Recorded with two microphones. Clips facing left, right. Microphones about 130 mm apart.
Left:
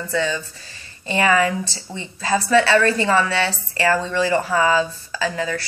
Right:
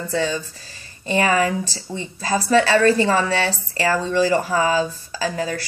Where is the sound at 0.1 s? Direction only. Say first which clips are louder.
Even; 30° right (ahead or behind).